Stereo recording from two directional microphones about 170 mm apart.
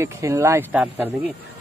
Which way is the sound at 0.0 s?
15° right (ahead or behind).